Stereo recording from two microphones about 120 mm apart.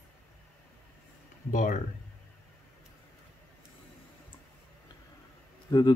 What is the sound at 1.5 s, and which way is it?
Speech, 90° left.